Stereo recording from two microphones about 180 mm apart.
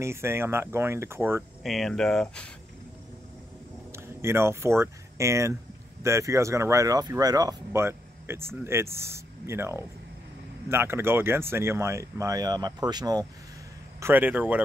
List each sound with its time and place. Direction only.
0.0 s speech: 15° right (ahead or behind)
1.6 s speech: centre (ahead or behind)
3.9 s speech: 15° right (ahead or behind)